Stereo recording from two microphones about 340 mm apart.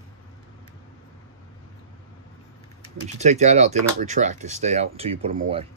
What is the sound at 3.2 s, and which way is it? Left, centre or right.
Speech, centre.